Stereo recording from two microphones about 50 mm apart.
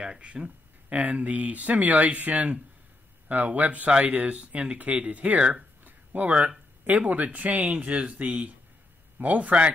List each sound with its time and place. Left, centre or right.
0.0 s speech: right
5.9 s a sound: right
6.8 s speech: right